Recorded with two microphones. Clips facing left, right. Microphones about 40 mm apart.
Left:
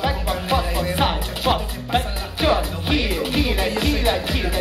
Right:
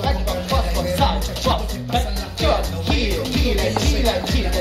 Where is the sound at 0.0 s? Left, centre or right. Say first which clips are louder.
Even; centre.